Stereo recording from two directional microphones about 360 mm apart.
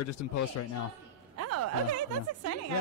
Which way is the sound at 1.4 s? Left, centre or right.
Right.